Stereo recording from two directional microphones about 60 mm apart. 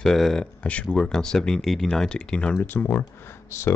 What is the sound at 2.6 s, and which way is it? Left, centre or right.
Speech, left.